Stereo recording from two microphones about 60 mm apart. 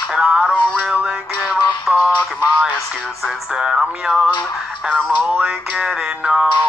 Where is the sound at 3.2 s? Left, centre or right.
Centre.